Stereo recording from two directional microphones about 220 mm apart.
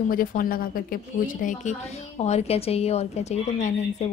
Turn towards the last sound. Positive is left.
turn(degrees=30)  # may be behind; listen again after turning